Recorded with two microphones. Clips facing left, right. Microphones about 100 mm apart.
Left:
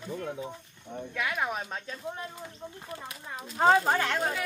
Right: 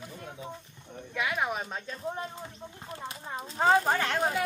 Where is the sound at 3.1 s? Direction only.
30° right (ahead or behind).